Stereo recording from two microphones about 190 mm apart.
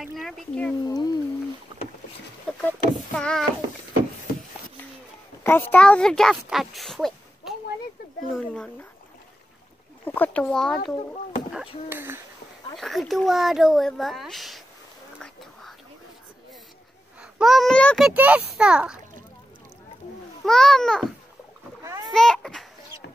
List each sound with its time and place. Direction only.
0.0 s speech: centre (ahead or behind)
0.8 s a sound: 20° left (ahead or behind)
2.6 s child singing: 5° left (ahead or behind)
5.4 s speech: 10° left (ahead or behind)
8.3 s a sound: 5° left (ahead or behind)
10.0 s speech: 10° left (ahead or behind)
11.5 s speech: 10° right (ahead or behind)
12.7 s a child's voice: centre (ahead or behind)
15.1 s whispering: centre (ahead or behind)
17.2 s a child's voice: centre (ahead or behind)
20.4 s a child's voice: centre (ahead or behind)
21.8 s rowboat: 15° right (ahead or behind)
22.1 s a child's voice: 5° left (ahead or behind)